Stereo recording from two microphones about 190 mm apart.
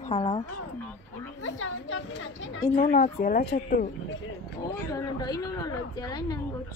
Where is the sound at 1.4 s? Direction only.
90° left.